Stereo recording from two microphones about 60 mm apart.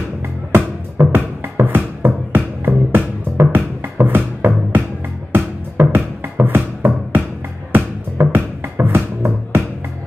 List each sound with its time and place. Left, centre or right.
0.5 s music: right